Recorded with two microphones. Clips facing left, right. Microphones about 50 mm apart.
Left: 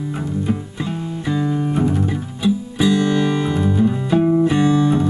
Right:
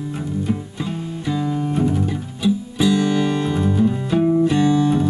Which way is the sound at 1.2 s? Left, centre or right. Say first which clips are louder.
Left 2 dB; centre.